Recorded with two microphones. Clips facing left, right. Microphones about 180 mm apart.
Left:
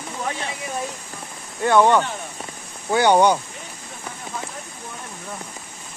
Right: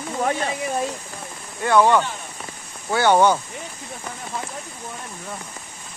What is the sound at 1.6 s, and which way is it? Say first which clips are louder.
Speech: left 1 dB; 20° left (ahead or behind).